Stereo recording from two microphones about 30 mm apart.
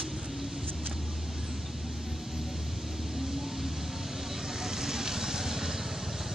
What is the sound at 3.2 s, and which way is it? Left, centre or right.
Vehicle, centre.